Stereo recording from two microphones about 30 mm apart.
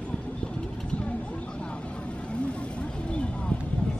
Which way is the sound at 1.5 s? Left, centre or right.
Left.